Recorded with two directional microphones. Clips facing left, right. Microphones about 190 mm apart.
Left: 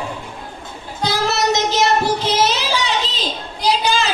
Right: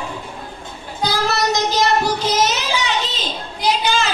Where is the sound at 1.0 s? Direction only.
25° left (ahead or behind).